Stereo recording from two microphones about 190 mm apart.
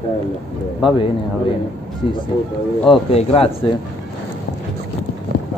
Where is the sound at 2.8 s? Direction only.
30° left (ahead or behind).